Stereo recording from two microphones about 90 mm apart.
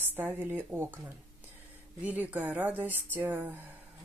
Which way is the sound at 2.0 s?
20° right (ahead or behind).